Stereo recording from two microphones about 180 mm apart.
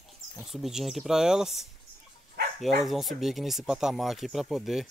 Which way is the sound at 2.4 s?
65° right (ahead or behind).